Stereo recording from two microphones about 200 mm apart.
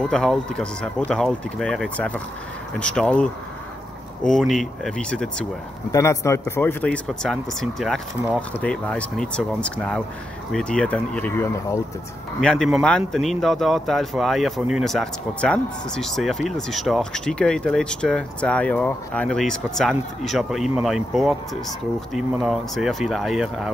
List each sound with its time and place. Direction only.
0.0 s speech: 5° left (ahead or behind)
5.9 s speech: 15° left (ahead or behind); by 23.7 s centre (ahead or behind)